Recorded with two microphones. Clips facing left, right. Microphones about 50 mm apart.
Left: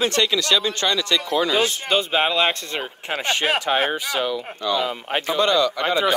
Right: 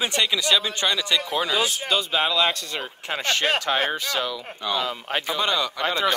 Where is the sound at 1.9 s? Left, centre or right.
Left.